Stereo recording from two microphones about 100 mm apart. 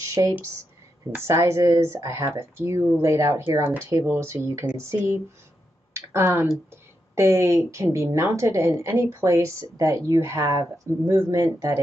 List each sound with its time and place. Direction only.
0.1 s a woman's voice: 35° right (ahead or behind)